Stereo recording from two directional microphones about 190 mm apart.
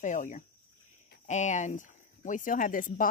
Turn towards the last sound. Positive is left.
turn(degrees=45)  # may be behind; listen again after turning